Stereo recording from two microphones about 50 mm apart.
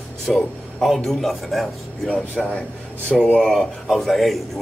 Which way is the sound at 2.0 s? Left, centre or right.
Left.